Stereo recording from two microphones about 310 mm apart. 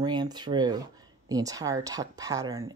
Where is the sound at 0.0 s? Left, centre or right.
Centre.